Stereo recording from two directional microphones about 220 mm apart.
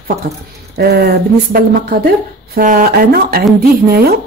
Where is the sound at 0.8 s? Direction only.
45° right (ahead or behind).